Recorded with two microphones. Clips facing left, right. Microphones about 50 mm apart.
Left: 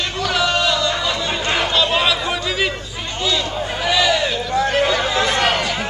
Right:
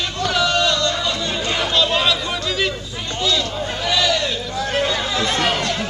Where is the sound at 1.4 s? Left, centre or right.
Left.